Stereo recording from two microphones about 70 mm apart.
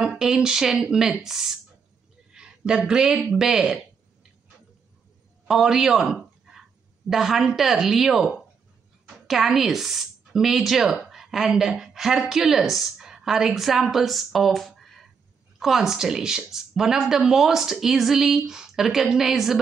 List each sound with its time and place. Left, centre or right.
0.0 s speech: centre
2.3 s a sound: centre
2.9 s speech: centre
5.5 s a woman's voice: centre